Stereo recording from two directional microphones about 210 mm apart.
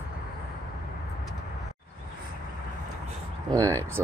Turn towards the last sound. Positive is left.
turn(degrees=-15)  # may be behind; listen again after turning